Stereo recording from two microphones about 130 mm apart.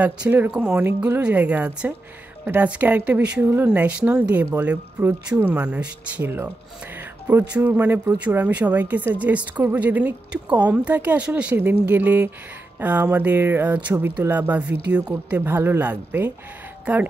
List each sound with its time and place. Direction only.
0.0 s speech: 10° right (ahead or behind)